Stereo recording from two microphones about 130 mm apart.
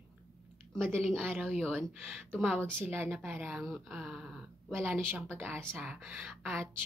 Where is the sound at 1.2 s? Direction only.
15° right (ahead or behind).